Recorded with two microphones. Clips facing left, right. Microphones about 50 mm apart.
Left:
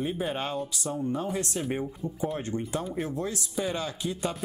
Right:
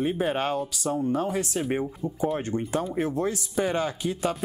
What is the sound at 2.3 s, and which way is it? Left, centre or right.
Speech, right.